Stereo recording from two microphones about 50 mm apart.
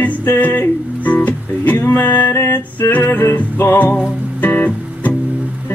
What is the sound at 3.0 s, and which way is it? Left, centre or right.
Music, left.